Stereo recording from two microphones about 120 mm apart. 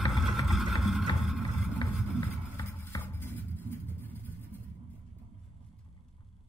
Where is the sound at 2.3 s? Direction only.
20° left (ahead or behind).